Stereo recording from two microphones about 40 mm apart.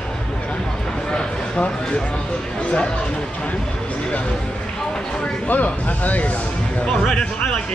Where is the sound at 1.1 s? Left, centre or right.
Left.